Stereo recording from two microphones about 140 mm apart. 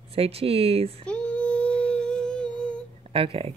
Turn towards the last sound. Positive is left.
turn(degrees=-40)  # may be behind; listen again after turning